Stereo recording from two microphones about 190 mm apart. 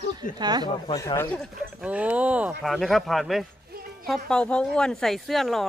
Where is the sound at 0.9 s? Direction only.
20° left (ahead or behind).